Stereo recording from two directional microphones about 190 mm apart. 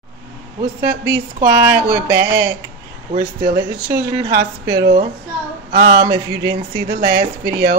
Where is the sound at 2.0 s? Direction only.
20° right (ahead or behind).